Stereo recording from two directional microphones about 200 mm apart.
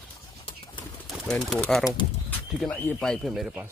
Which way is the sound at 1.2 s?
Centre (ahead or behind).